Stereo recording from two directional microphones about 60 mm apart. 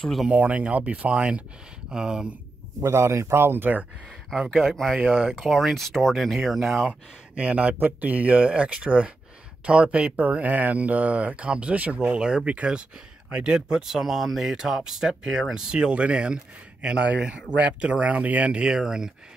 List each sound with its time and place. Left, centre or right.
0.3 s speech: right
2.8 s speech: right
4.3 s speech: centre
6.9 s speech: right